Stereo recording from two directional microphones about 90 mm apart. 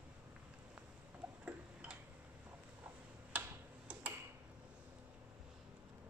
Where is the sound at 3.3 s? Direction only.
15° right (ahead or behind).